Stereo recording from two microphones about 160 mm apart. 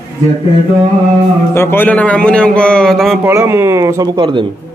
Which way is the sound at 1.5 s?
15° left (ahead or behind).